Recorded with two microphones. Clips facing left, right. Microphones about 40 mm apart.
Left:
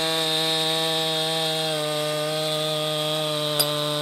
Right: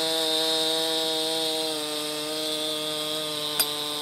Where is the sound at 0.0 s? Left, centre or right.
Left.